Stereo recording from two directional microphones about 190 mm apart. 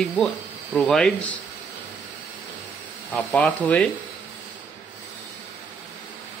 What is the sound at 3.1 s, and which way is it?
Speech, 10° left (ahead or behind).